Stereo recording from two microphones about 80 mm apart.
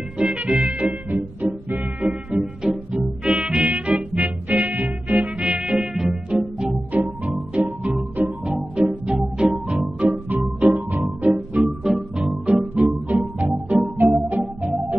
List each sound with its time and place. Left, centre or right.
0.2 s music: centre
6.9 s music: right